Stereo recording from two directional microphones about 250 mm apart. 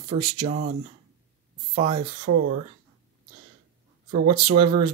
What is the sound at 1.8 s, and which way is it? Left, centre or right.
Speech, right.